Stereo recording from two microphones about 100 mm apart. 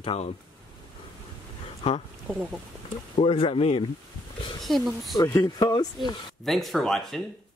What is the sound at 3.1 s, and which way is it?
Speech, 75° left (ahead or behind).